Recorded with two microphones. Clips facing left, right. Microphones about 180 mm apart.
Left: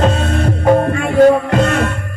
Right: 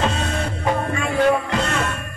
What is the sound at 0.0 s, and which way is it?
Music, 50° left (ahead or behind).